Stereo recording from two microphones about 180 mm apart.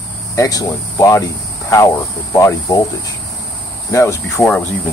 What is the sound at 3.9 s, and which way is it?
Speech, 15° left (ahead or behind).